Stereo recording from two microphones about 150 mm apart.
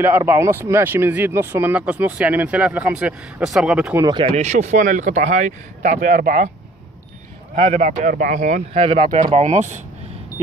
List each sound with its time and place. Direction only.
0.0 s speech: 15° right (ahead or behind)
4.0 s speech: 30° right (ahead or behind)
4.3 s speech: 50° right (ahead or behind); by 6.5 s 65° right (ahead or behind)
7.5 s speech: 45° right (ahead or behind); by 8.6 s 70° right (ahead or behind)
8.7 s speech: 40° right (ahead or behind)
9.0 s speech: 60° right (ahead or behind)